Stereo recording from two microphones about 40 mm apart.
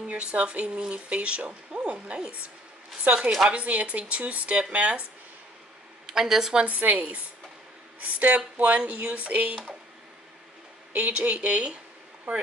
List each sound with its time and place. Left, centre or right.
0.1 s speech: right
3.4 s speech: right
6.0 s speech: centre
6.7 s speech: right
8.0 s speech: right
11.0 s speech: right